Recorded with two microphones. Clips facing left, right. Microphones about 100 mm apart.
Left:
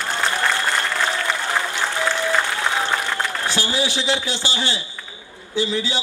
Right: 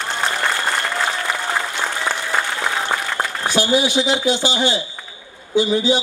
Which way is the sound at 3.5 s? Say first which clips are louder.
Right 9 dB; 20° right (ahead or behind).